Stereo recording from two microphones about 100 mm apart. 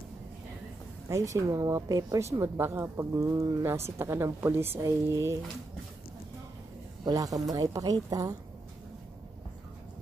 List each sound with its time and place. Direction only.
1.0 s a woman's voice: 30° right (ahead or behind)
7.1 s a woman's voice: 40° right (ahead or behind)